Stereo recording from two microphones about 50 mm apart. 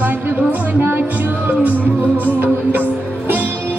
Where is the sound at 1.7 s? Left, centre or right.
Left.